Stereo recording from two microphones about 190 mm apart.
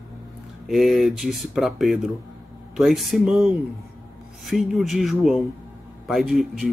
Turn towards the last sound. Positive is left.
turn(degrees=0)  # may be behind; listen again after turning